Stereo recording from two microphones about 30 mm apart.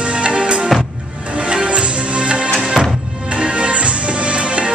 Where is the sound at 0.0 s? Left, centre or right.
Right.